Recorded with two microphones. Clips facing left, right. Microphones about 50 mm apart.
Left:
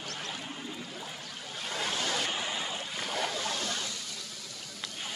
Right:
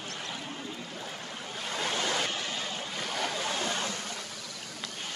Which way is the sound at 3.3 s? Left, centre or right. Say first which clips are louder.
Right 2 dB; centre.